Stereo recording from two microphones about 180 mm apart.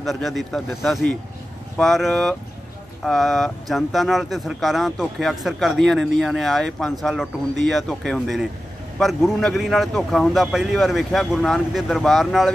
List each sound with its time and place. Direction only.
0.0 s speech: centre (ahead or behind)